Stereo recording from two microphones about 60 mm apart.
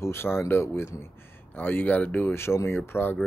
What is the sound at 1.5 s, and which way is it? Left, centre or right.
Speech, left.